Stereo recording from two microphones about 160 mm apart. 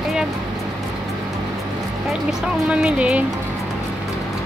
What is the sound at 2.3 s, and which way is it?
Speech, 5° right (ahead or behind).